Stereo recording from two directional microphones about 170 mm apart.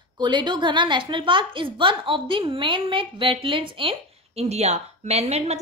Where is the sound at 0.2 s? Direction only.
25° right (ahead or behind).